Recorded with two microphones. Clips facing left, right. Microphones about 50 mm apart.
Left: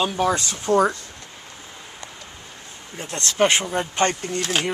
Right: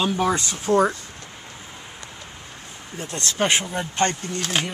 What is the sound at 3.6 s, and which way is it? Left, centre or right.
Speech, centre.